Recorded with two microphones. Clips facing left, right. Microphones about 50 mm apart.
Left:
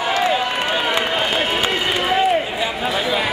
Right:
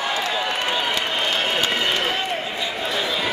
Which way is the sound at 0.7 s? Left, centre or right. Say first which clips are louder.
Left 4 dB; centre.